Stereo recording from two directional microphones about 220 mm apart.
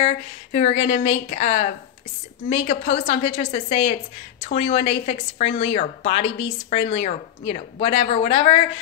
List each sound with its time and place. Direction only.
0.0 s a woman's voice: 30° left (ahead or behind)